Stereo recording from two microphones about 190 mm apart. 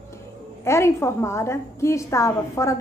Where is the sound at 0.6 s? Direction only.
15° left (ahead or behind).